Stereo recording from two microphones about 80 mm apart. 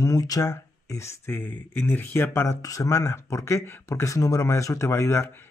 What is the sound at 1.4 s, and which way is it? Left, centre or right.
Speech, left.